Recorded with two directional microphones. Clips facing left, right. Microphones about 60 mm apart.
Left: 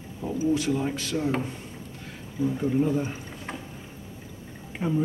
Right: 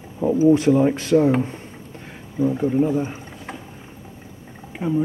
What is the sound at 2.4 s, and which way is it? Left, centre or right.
Speech, centre.